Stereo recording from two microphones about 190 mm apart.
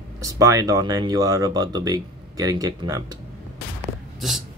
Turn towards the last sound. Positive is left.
turn(degrees=0)  # may be behind; listen again after turning